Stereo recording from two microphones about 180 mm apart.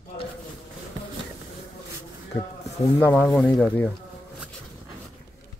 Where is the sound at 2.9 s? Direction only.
10° left (ahead or behind).